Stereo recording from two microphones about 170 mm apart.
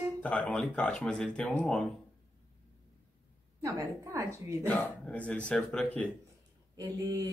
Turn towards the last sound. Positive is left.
turn(degrees=-20)  # may be behind; listen again after turning